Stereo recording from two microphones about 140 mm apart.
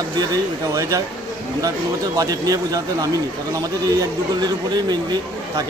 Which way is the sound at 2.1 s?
25° right (ahead or behind).